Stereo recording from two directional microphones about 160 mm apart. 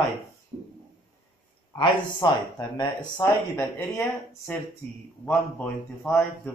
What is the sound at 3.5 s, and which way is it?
A man's voice, 15° left (ahead or behind).